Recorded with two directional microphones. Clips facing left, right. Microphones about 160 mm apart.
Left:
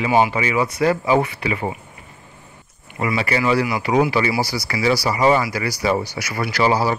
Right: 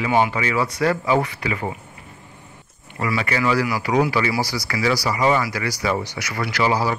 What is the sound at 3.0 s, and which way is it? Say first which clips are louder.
Speech: left 2 dB; 25° left (ahead or behind).